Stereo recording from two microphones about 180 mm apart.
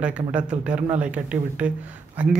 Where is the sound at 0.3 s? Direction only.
5° right (ahead or behind).